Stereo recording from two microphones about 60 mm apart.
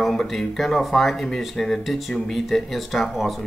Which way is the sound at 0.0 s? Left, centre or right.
Centre.